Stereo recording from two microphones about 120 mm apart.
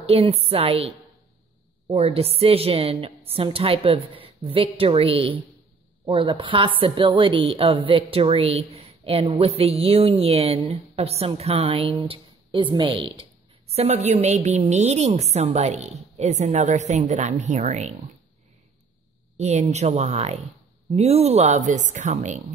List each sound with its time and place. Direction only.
0.0 s a woman's voice: 55° right (ahead or behind)
13.7 s a woman's voice: 65° right (ahead or behind)
19.3 s a woman's voice: 70° right (ahead or behind); by 22.4 s 90° right